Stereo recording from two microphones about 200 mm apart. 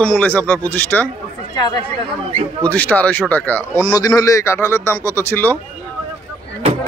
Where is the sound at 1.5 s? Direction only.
20° left (ahead or behind).